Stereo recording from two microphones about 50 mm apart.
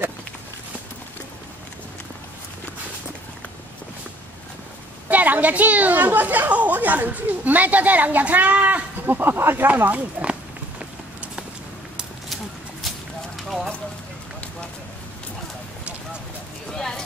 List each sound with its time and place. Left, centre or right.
5.1 s speech: right
13.4 s clip-clop: centre
16.7 s a sound: centre